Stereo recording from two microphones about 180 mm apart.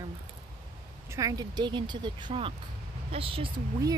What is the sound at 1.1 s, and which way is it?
Speech, 20° right (ahead or behind).